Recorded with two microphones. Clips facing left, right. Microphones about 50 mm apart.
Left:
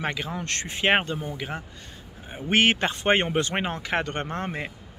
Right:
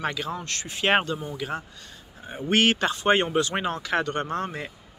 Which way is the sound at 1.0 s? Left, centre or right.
Centre.